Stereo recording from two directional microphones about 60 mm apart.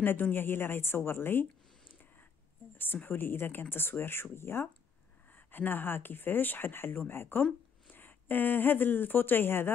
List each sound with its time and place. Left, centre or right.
0.0 s a woman's voice: left